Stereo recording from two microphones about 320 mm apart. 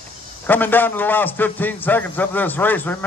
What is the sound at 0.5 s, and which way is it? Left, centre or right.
A man's voice, centre.